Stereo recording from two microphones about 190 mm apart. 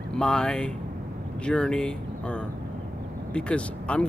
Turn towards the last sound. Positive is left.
turn(degrees=5)  # may be behind; listen again after turning